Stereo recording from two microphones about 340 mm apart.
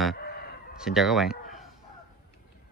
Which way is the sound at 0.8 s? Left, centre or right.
Centre.